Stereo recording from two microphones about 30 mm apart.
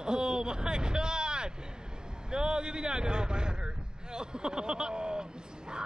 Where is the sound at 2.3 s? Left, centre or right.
Right.